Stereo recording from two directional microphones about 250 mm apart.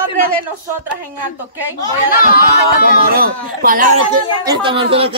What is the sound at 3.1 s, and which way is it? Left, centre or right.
Speech, right.